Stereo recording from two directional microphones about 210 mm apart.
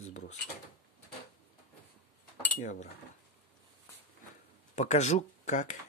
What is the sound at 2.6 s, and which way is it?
Speech, 35° left (ahead or behind).